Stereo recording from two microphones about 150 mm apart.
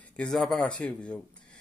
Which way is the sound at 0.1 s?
5° left (ahead or behind).